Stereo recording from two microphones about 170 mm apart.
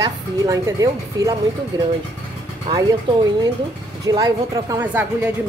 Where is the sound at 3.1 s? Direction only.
30° right (ahead or behind).